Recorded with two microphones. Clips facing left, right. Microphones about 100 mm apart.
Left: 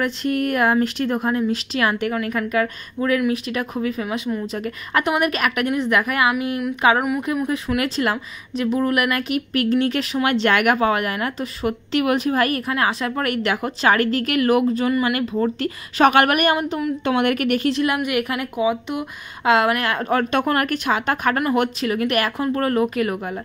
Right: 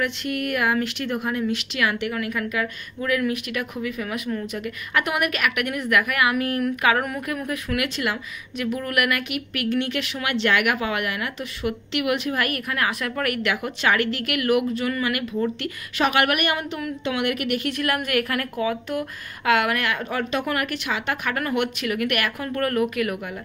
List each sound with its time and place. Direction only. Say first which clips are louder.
0.0 s a woman's voice: left 5 dB; 35° left (ahead or behind)
17.0 s a woman's voice: left 5 dB; 50° left (ahead or behind)
17.6 s speech: left 5 dB; 25° left (ahead or behind); by 21.4 s 45° left (ahead or behind)
21.5 s speech: left 4 dB; 30° left (ahead or behind)